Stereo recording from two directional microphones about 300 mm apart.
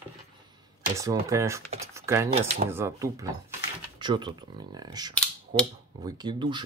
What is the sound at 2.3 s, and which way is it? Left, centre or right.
Speech, right.